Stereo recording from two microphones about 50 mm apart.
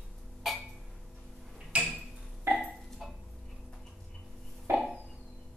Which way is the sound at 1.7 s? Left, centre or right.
Right.